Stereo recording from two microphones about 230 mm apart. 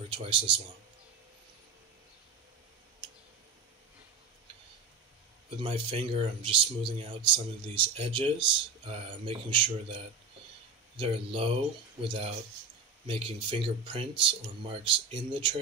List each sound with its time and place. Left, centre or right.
0.1 s speech: right
5.6 s speech: right
13.0 s speech: right